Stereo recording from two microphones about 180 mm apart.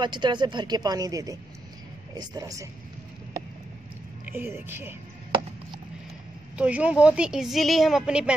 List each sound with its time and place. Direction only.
0.0 s a woman's voice: 25° right (ahead or behind)
4.3 s speech: 10° right (ahead or behind)
6.5 s a woman's voice: 5° right (ahead or behind)